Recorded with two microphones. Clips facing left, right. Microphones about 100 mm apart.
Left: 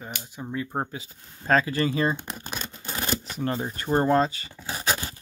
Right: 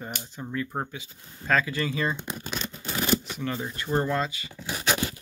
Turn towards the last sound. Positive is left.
turn(degrees=35)  # may be behind; listen again after turning